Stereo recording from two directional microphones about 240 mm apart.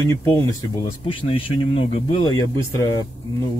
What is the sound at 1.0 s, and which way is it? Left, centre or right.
Speech, left.